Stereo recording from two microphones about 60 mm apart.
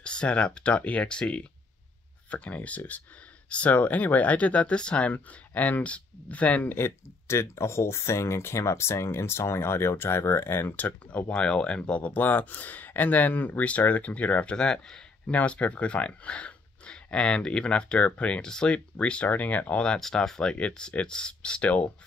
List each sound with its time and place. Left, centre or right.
0.0 s speech: centre
6.8 s speech: left
10.8 s speech: left